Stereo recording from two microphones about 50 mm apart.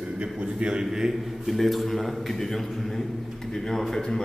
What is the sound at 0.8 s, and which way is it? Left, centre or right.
A man's voice, centre.